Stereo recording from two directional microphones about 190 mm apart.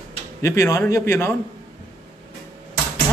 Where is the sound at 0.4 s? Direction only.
15° left (ahead or behind).